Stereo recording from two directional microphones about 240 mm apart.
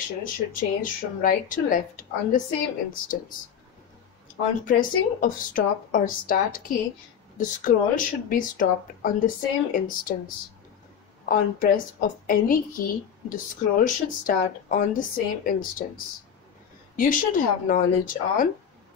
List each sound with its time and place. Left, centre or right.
0.0 s a woman's voice: left
4.6 s a woman's voice: left
16.9 s a woman's voice: left